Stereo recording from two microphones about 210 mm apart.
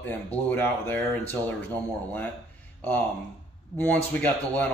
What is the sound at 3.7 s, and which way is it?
Speech, 10° left (ahead or behind).